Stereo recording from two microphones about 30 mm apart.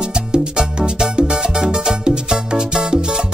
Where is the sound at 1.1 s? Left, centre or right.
Right.